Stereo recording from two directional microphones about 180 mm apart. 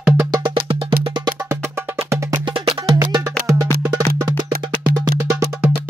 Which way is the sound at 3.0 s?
15° right (ahead or behind).